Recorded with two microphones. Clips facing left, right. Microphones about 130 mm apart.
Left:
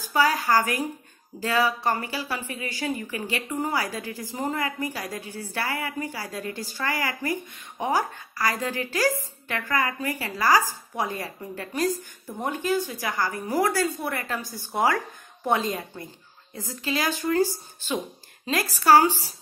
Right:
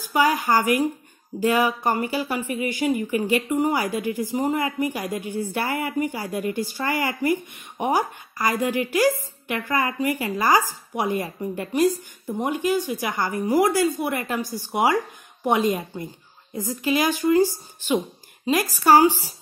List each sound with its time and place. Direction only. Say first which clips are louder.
0.1 s speech: right 2 dB; 15° right (ahead or behind)